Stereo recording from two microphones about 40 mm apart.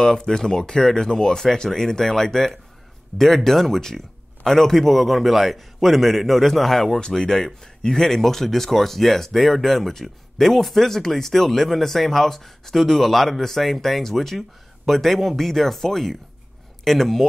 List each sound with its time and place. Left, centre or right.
0.0 s a man's voice: centre
7.0 s speech: centre